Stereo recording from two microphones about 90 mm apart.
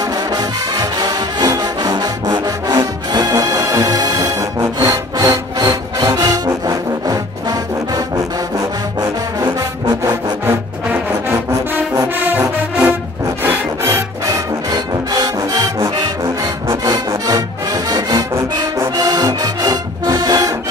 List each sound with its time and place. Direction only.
0.3 s music: 50° right (ahead or behind)
4.7 s sawing: 45° right (ahead or behind)
13.4 s music: 30° right (ahead or behind); by 20.5 s 45° right (ahead or behind)